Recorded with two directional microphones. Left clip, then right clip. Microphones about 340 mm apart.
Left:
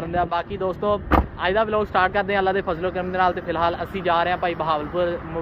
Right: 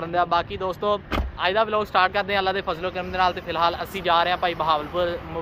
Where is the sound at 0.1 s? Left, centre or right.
Centre.